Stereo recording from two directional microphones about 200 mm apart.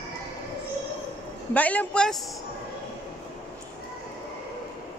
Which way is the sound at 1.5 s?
5° left (ahead or behind).